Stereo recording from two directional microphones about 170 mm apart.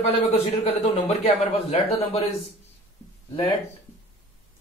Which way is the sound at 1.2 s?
40° left (ahead or behind).